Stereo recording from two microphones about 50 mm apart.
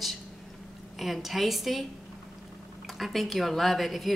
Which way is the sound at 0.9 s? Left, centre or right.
Centre.